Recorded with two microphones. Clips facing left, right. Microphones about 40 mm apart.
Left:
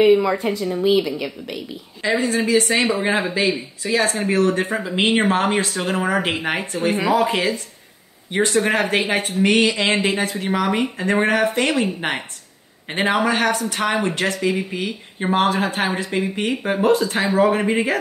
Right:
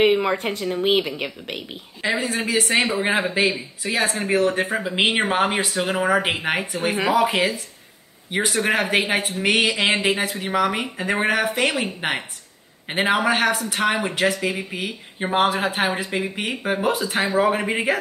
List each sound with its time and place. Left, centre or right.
0.0 s a woman's voice: right
2.0 s speech: centre